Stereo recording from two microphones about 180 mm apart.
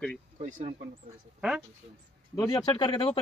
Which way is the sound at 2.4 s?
20° left (ahead or behind).